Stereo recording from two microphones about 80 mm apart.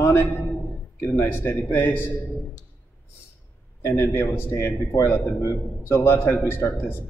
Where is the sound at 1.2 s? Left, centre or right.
Left.